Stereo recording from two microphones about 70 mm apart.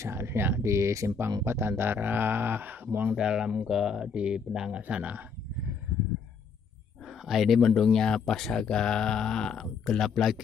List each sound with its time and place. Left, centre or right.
0.0 s speech: right
3.2 s speech: centre
7.1 s speech: centre